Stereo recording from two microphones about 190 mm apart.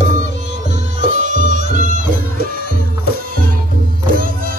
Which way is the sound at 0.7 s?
40° right (ahead or behind).